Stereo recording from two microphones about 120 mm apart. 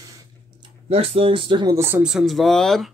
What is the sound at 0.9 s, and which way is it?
Speech, 55° right (ahead or behind).